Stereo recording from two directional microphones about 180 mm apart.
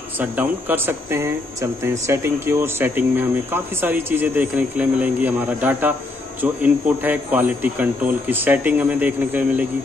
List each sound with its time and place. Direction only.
0.2 s speech: 10° right (ahead or behind)